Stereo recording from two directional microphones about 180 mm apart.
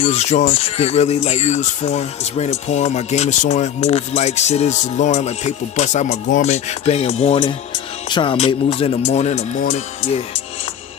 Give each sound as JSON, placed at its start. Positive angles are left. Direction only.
{"t": 0.0, "sound": "speech", "side_deg": 35}